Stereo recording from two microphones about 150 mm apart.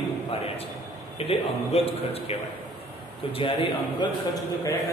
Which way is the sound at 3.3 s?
35° left (ahead or behind).